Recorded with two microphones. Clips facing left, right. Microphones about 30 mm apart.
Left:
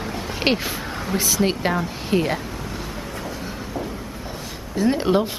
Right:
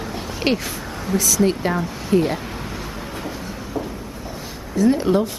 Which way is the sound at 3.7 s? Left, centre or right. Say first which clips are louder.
Right 1 dB; centre.